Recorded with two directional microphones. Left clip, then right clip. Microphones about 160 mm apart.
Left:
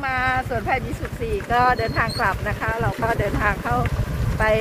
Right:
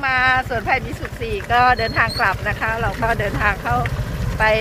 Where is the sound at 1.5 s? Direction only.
25° left (ahead or behind).